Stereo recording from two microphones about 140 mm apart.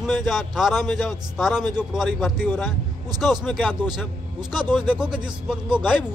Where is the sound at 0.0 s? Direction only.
Centre (ahead or behind).